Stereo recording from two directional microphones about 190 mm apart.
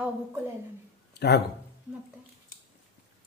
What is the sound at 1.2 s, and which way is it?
Speech, 60° left (ahead or behind).